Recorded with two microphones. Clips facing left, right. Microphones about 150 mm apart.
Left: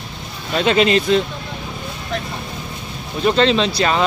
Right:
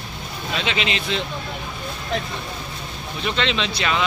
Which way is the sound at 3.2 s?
40° left (ahead or behind).